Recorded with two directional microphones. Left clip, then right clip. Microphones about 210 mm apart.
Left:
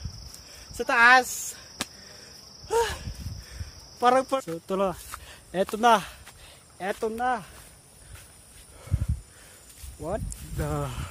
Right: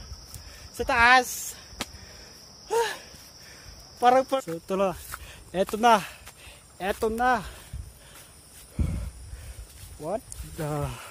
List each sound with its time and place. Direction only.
0.6 s a sound: 5° left (ahead or behind)
2.7 s cricket: 10° left (ahead or behind)
4.0 s speech: 5° left (ahead or behind); by 7.2 s 10° right (ahead or behind)
7.2 s speech: 30° right (ahead or behind)
8.8 s a sound: 10° right (ahead or behind)
10.0 s speech: 15° left (ahead or behind)
10.6 s speech: centre (ahead or behind)